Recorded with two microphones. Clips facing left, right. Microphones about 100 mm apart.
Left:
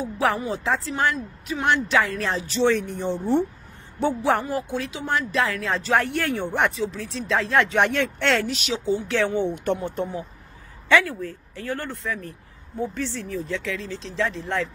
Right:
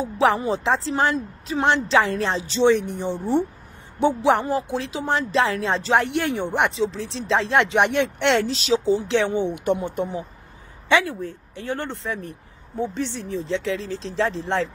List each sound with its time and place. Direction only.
0.0 s speech: 25° right (ahead or behind)